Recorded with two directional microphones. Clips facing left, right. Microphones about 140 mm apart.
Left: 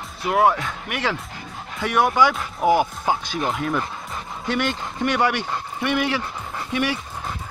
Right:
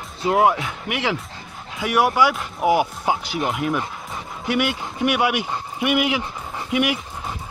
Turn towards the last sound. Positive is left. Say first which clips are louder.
# right 2 dB
turn(degrees=-15)  # may be behind; listen again after turning